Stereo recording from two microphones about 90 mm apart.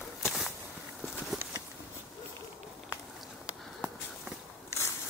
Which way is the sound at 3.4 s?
5° right (ahead or behind).